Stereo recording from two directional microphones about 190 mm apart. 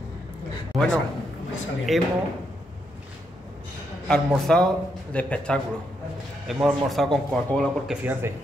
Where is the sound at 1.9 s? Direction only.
Centre (ahead or behind).